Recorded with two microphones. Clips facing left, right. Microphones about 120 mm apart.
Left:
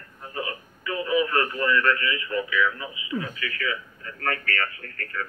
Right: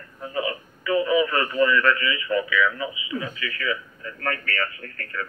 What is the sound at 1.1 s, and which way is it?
Speech, 90° right.